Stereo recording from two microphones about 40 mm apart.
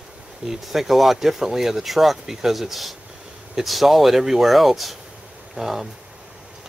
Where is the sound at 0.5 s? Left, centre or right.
Centre.